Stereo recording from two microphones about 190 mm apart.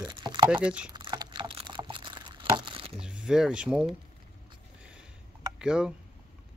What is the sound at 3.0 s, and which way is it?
Speech, 5° right (ahead or behind).